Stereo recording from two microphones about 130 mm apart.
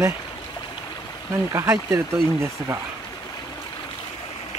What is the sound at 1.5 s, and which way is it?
Speech, 25° right (ahead or behind).